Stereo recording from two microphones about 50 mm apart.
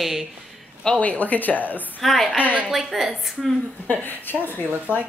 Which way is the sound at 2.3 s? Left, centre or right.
Right.